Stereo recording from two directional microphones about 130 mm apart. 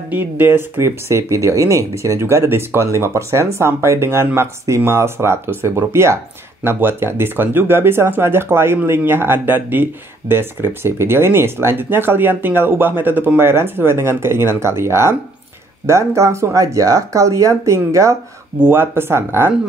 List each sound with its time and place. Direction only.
0.1 s speech: 15° right (ahead or behind)